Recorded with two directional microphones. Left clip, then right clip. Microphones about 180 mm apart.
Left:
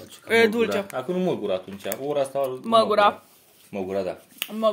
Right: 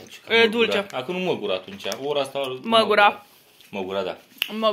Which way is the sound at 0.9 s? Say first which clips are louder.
Even; 50° left (ahead or behind).